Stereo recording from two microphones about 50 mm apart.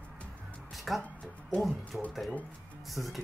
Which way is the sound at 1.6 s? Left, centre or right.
Centre.